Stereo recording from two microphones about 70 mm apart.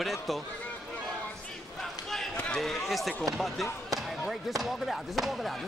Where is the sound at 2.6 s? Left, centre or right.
Centre.